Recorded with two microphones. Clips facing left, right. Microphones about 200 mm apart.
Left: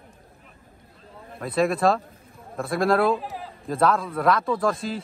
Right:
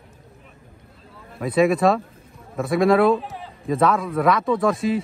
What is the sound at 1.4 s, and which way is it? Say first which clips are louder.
A man's voice: right 4 dB; centre (ahead or behind).